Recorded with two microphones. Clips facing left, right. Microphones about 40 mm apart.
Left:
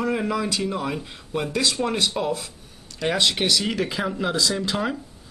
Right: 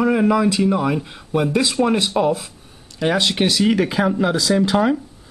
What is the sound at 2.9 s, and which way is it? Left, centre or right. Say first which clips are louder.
Speech: right 4 dB; centre.